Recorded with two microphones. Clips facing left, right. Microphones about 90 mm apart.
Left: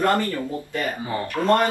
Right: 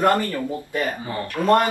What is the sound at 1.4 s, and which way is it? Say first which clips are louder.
Speech: right 1 dB; 25° left (ahead or behind).